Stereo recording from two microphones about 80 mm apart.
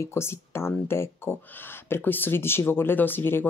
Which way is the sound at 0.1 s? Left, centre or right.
Left.